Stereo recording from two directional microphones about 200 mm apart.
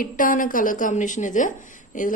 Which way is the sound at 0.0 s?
45° left (ahead or behind).